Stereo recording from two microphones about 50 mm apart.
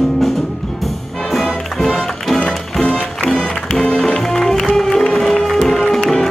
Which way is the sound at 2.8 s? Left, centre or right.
Left.